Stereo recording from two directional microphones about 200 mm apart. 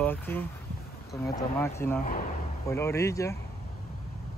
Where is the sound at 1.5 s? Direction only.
10° left (ahead or behind).